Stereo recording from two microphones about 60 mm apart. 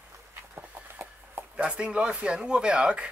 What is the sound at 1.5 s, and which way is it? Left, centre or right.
Speech, centre.